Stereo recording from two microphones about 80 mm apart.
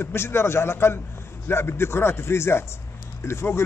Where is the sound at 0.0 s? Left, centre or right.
Left.